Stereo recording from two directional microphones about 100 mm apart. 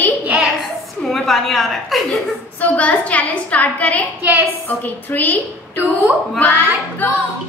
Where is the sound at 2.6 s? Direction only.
15° left (ahead or behind).